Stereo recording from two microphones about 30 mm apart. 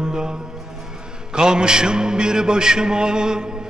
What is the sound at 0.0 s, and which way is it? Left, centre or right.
Music, right.